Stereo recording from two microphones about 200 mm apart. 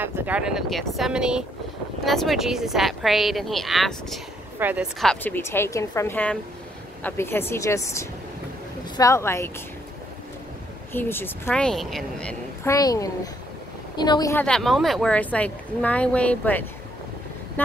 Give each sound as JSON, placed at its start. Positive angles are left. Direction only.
{"t": 0.0, "sound": "speech", "side_deg": -10}
{"t": 5.0, "sound": "speech", "side_deg": 5}
{"t": 10.9, "sound": "speech", "side_deg": 10}
{"t": 12.7, "sound": "a woman's voice", "side_deg": 15}
{"t": 14.3, "sound": "speech", "side_deg": 5}